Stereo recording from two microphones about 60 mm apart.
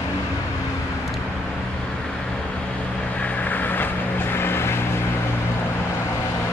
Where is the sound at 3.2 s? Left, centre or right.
Left.